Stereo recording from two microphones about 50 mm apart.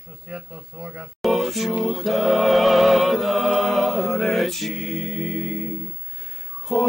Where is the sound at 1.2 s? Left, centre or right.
Centre.